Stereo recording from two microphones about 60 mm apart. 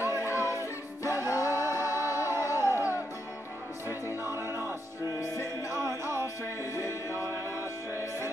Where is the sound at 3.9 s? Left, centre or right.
Right.